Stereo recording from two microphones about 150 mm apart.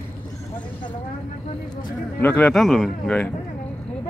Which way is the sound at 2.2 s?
10° left (ahead or behind).